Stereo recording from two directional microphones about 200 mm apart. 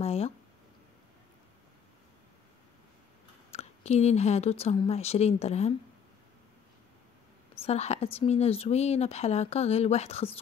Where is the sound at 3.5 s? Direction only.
30° left (ahead or behind).